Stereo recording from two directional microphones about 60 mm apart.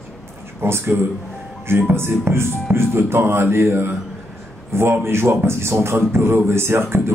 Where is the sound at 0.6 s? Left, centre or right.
Right.